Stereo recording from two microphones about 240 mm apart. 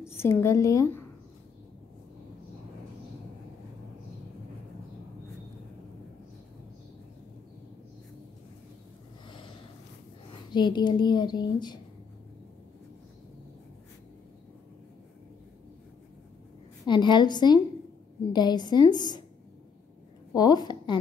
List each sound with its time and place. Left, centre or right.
0.1 s a woman's voice: centre
10.5 s a woman's voice: centre
16.8 s a woman's voice: centre
20.3 s a woman's voice: centre